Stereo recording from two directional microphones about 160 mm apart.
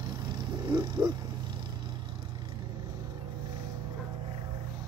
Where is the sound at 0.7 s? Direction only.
25° right (ahead or behind).